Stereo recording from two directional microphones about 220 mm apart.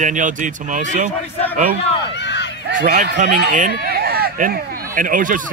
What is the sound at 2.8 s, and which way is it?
Speech, 35° right (ahead or behind).